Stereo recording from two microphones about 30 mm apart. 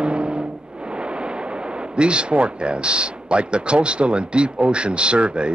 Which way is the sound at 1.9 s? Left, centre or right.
Right.